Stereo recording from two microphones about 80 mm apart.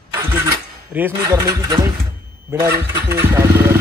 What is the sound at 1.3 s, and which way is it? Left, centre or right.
Speech, right.